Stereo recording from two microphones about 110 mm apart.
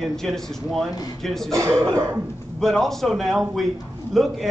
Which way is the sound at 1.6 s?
25° right (ahead or behind).